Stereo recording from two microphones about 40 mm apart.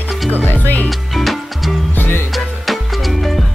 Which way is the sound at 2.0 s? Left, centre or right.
Left.